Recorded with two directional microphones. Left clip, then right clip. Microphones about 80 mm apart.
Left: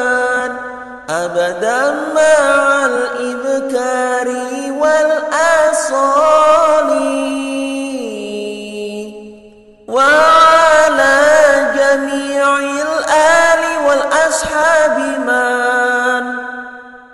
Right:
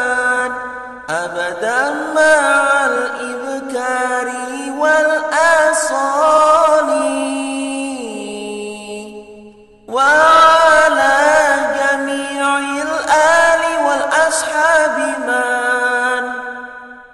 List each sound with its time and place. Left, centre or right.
0.0 s music: left
1.1 s mantra: left
9.9 s chant: left
15.2 s music: left